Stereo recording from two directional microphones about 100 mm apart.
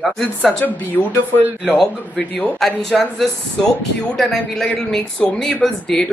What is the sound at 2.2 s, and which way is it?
Speech, 15° left (ahead or behind).